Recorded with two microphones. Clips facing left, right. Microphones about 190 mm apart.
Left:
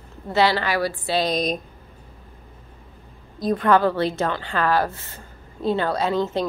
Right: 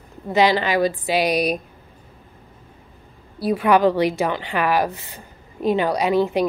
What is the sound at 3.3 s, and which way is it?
A woman's voice, 10° right (ahead or behind).